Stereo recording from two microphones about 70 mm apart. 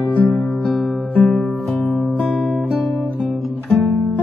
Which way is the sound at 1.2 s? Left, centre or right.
Centre.